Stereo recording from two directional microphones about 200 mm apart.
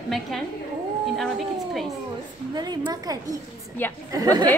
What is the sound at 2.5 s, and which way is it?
A woman's voice, 20° right (ahead or behind).